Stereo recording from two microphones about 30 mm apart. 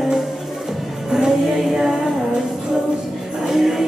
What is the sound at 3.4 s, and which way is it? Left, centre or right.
Music, centre.